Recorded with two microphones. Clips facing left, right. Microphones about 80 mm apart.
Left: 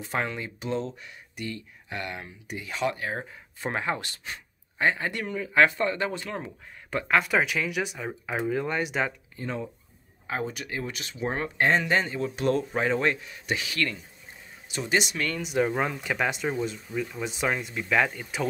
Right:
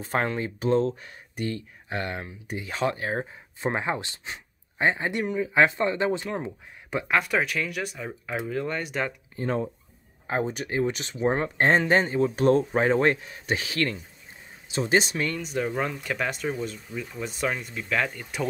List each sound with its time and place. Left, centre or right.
0.0 s speech: right
6.3 s speech: centre
7.2 s speech: centre
9.4 s speech: right
15.3 s speech: centre